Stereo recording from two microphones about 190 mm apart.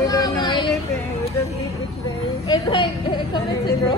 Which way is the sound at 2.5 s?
25° left (ahead or behind).